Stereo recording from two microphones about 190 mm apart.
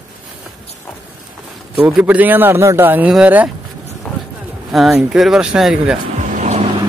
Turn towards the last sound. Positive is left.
turn(degrees=-40)  # may be behind; listen again after turning